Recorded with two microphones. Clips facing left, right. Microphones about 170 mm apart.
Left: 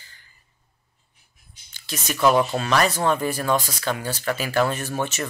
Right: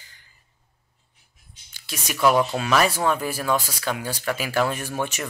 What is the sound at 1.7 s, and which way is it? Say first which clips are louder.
Speech: left 3 dB; 10° right (ahead or behind).